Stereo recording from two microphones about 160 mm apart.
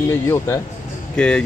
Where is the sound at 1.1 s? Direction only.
5° left (ahead or behind).